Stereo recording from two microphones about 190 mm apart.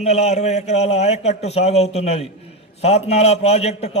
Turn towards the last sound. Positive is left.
turn(degrees=35)  # may be behind; listen again after turning